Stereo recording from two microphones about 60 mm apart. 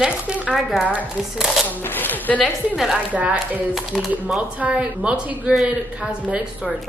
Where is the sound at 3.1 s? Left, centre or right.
Right.